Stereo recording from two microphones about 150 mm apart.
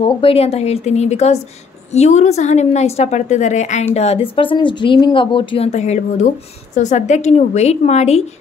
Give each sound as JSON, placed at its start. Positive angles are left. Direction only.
{"t": 0.0, "sound": "a woman's voice", "side_deg": 40}
{"t": 5.7, "sound": "a woman's voice", "side_deg": 50}